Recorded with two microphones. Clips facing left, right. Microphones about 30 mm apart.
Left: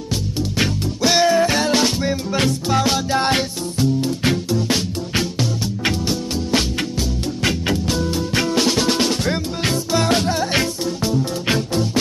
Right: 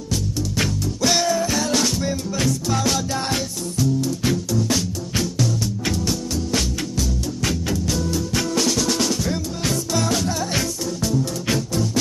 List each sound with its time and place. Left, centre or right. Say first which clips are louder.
0.6 s music: left 2 dB; left
3.3 s music: left 5 dB; left